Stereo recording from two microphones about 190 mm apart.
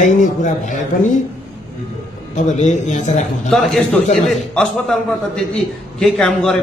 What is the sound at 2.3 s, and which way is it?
Speech, 40° left (ahead or behind).